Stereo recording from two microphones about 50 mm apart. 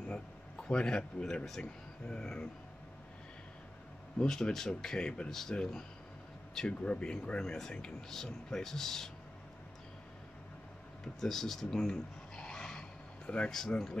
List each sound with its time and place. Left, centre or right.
0.1 s speech: centre
1.6 s speech: centre
4.2 s speech: centre
11.1 s speech: centre